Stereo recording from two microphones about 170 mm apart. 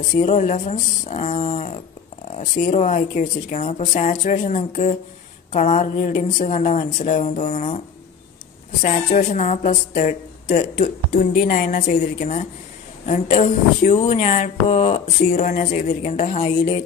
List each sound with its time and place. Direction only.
0.1 s speech: 45° left (ahead or behind)
8.8 s speech: 45° left (ahead or behind)